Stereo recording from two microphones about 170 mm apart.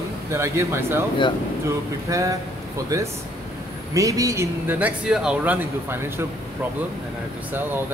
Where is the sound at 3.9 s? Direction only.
20° right (ahead or behind).